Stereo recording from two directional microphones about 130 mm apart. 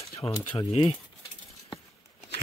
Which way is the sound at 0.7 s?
50° left (ahead or behind).